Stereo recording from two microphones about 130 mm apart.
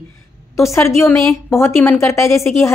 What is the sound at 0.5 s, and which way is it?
A woman's voice, 25° left (ahead or behind).